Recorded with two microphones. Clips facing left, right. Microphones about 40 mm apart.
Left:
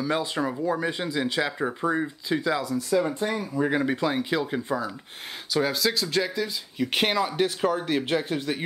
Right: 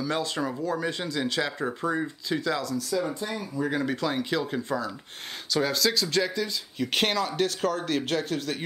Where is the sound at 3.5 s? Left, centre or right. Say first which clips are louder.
Left 2 dB; left.